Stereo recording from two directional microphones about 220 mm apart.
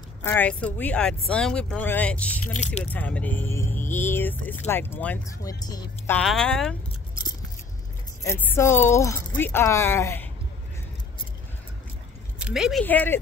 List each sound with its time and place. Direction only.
0.2 s speech: 10° left (ahead or behind)
2.4 s speech: 30° left (ahead or behind)
2.8 s speech: 5° left (ahead or behind)
6.1 s speech: 5° left (ahead or behind)
8.2 s speech: 10° left (ahead or behind)
12.4 s speech: 5° right (ahead or behind)
12.8 s speech: 10° left (ahead or behind)